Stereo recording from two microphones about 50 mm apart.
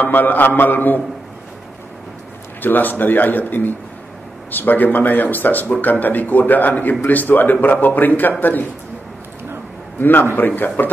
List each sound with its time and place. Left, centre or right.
0.0 s speech: left
2.6 s speech: left
9.9 s a man's voice: left